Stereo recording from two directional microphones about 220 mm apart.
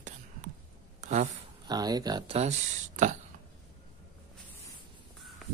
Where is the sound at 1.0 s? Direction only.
35° right (ahead or behind).